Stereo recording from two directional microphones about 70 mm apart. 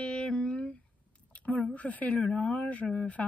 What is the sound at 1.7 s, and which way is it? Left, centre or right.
Speech, left.